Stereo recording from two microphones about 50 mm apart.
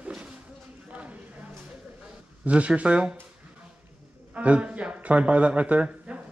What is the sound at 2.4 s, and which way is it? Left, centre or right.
Speech, right.